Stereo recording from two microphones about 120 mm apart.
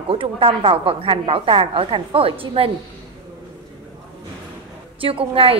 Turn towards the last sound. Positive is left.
turn(degrees=-50)  # may be behind; listen again after turning